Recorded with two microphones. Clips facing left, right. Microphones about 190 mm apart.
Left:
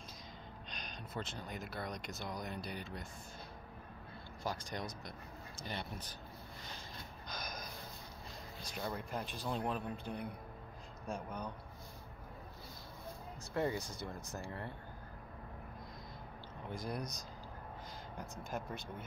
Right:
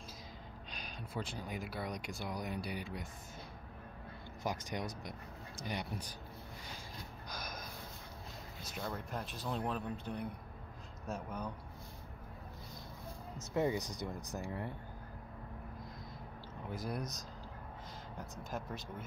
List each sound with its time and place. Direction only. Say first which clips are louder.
0.7 s speech: right 2 dB; 5° right (ahead or behind)
4.4 s speech: right 2 dB; 15° right (ahead or behind)
7.3 s snort: even; 5° right (ahead or behind)
8.6 s speech: even; centre (ahead or behind)
13.4 s speech: right 3 dB; 15° right (ahead or behind)
16.6 s speech: right 1 dB; 5° right (ahead or behind)